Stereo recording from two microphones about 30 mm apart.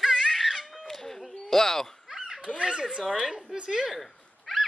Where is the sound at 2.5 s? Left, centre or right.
Right.